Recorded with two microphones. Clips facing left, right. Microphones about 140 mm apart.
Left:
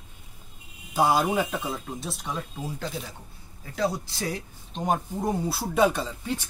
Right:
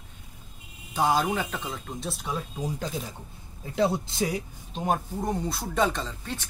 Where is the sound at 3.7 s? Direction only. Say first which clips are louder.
Right 3 dB; 25° right (ahead or behind).